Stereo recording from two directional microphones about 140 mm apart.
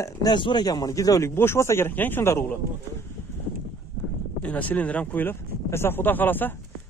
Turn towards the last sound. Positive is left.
turn(degrees=15)  # may be behind; listen again after turning